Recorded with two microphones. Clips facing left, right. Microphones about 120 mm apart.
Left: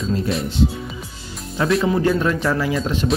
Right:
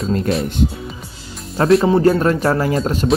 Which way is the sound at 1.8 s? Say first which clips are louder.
Right 4 dB; 30° right (ahead or behind).